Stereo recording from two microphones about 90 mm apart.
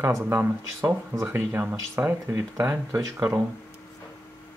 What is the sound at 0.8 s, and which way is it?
Speech, 35° right (ahead or behind).